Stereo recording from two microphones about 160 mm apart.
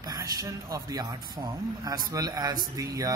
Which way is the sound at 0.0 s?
25° right (ahead or behind).